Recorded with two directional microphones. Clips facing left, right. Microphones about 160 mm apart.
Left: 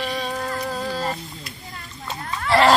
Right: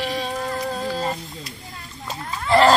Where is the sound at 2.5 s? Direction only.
Centre (ahead or behind).